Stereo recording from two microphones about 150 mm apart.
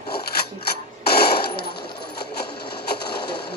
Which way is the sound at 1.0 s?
90° left.